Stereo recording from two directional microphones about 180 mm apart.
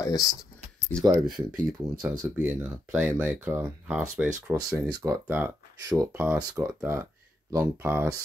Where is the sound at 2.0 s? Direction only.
10° right (ahead or behind).